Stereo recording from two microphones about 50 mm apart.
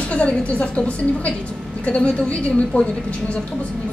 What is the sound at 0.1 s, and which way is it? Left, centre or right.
A woman's voice, left.